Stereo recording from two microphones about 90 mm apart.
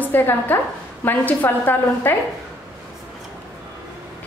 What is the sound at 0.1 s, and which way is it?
A woman's voice, 20° left (ahead or behind).